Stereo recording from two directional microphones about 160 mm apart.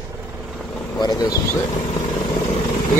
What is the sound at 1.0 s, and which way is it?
Speech, 25° left (ahead or behind).